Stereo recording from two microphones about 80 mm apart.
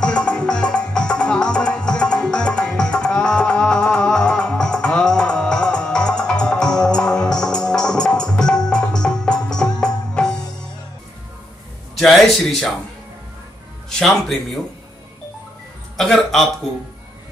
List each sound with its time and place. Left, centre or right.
0.0 s music: centre
11.9 s speech: centre
13.8 s music: centre
16.0 s a man's voice: centre